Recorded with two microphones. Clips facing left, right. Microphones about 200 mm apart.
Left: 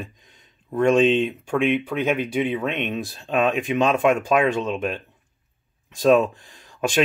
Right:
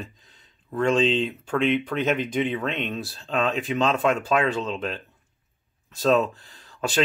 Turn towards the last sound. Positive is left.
turn(degrees=15)  # may be behind; listen again after turning